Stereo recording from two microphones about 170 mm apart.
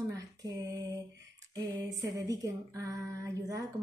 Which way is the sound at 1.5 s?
20° right (ahead or behind).